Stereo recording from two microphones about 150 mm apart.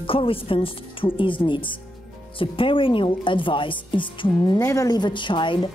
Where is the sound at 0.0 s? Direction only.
35° left (ahead or behind).